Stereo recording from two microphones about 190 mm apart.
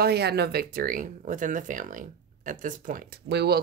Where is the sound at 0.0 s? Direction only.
60° right (ahead or behind).